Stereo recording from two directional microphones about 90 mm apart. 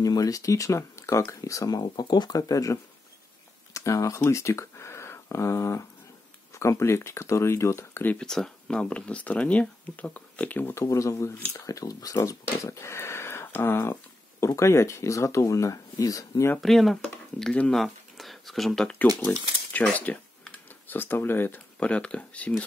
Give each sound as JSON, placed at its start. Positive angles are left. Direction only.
{"t": 0.0, "sound": "speech", "side_deg": 40}
{"t": 2.3, "sound": "speech", "side_deg": 40}
{"t": 8.2, "sound": "speech", "side_deg": 5}
{"t": 10.7, "sound": "speech", "side_deg": 35}
{"t": 11.3, "sound": "speech", "side_deg": 25}
{"t": 11.6, "sound": "speech", "side_deg": 40}
{"t": 16.6, "sound": "speech", "side_deg": 5}
{"t": 19.7, "sound": "computer keyboard", "side_deg": 15}
{"t": 21.7, "sound": "speech", "side_deg": 15}